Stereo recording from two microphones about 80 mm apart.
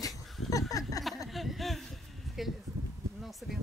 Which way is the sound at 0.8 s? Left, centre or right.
Left.